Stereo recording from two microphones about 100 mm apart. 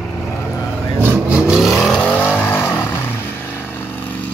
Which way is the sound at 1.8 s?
10° left (ahead or behind).